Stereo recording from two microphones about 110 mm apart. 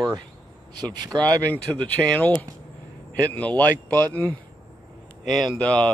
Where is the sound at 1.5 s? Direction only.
15° left (ahead or behind).